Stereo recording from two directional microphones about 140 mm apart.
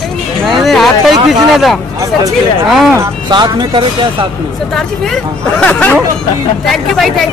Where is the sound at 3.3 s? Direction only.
30° right (ahead or behind).